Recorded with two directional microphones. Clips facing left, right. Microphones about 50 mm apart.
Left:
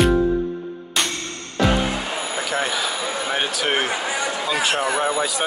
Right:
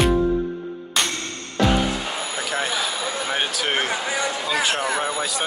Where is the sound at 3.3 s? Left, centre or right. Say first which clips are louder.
Left 2 dB; centre.